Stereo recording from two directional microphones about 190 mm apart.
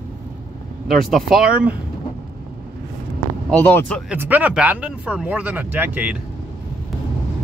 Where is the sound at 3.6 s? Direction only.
10° left (ahead or behind).